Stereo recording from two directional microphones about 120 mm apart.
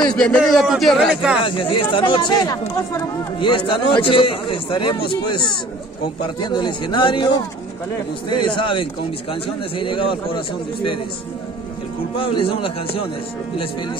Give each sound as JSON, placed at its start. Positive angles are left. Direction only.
{"t": 0.0, "sound": "a man's voice", "side_deg": 5}
{"t": 1.4, "sound": "speech", "side_deg": 45}
{"t": 3.3, "sound": "a man's voice", "side_deg": 45}
{"t": 12.2, "sound": "a man's voice", "side_deg": 50}